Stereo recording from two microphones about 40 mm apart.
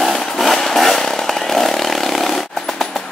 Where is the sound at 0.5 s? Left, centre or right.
Centre.